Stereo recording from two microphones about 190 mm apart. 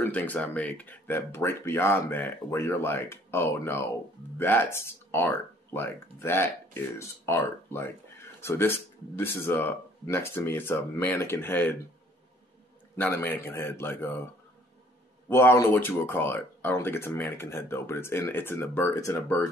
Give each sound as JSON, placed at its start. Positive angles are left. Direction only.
{"t": 0.0, "sound": "speech", "side_deg": 10}
{"t": 12.9, "sound": "speech", "side_deg": 10}
{"t": 15.2, "sound": "speech", "side_deg": 15}